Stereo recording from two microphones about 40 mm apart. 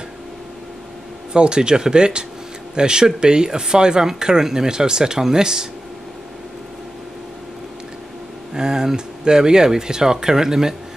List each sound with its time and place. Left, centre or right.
1.3 s speech: right
8.5 s speech: centre